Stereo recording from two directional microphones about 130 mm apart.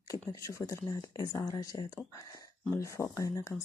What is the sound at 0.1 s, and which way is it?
Speech, 25° left (ahead or behind).